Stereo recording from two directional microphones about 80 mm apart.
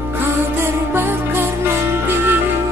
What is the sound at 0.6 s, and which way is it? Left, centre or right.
Music, right.